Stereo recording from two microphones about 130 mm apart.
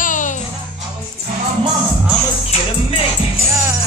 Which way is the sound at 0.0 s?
80° left.